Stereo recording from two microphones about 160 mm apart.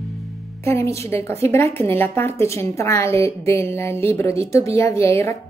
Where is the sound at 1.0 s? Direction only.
15° left (ahead or behind).